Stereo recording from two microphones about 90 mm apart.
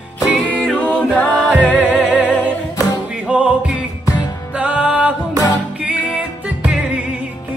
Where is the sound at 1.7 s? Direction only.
15° right (ahead or behind).